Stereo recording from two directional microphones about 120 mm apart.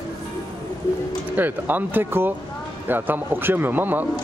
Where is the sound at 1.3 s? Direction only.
15° right (ahead or behind).